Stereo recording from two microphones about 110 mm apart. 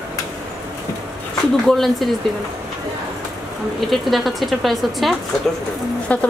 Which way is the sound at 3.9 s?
Centre (ahead or behind).